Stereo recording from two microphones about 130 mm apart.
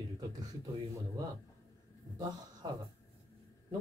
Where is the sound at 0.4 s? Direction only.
30° right (ahead or behind).